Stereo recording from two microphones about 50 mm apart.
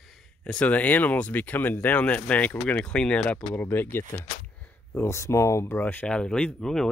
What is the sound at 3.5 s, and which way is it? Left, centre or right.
Speech, left.